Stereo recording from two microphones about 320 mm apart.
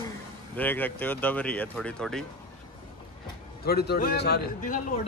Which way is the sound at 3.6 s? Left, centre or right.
Left.